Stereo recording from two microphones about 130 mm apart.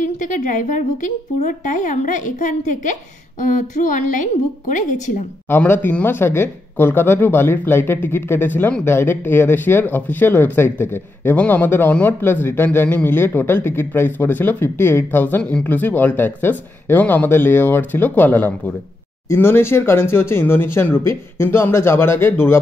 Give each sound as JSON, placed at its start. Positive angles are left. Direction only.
{"t": 0.0, "sound": "a woman's voice", "side_deg": 75}
{"t": 5.5, "sound": "speech", "side_deg": 15}